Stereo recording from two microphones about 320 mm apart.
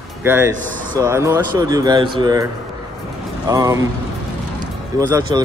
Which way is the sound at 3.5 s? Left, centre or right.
Centre.